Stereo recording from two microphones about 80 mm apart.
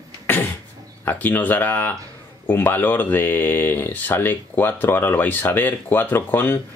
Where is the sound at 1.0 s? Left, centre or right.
Left.